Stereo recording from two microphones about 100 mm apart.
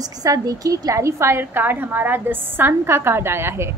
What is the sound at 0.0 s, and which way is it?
A woman's voice, 35° right (ahead or behind).